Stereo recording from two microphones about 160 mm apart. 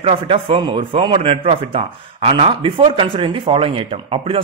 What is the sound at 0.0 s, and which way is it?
Speech, 35° right (ahead or behind).